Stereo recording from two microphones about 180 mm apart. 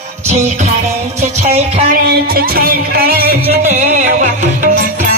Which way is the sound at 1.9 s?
55° right (ahead or behind).